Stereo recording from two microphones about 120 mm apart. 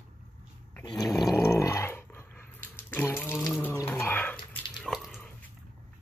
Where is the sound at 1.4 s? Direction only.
20° left (ahead or behind).